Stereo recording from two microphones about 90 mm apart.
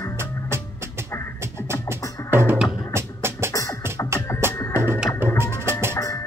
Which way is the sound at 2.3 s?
25° right (ahead or behind).